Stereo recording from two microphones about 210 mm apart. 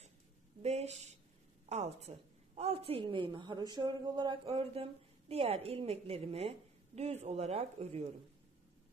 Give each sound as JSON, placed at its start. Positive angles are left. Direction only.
{"t": 0.6, "sound": "a woman's voice", "side_deg": -30}